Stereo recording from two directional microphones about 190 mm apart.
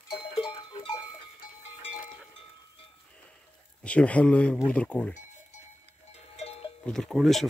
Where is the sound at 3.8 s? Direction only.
5° left (ahead or behind).